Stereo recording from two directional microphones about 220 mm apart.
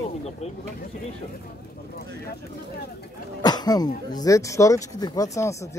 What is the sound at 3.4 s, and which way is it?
Speech, 20° left (ahead or behind).